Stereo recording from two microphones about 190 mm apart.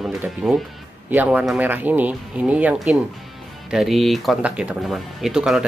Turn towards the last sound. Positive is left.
turn(degrees=0)  # may be behind; listen again after turning